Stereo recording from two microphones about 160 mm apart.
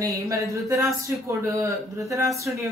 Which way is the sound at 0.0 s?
20° right (ahead or behind).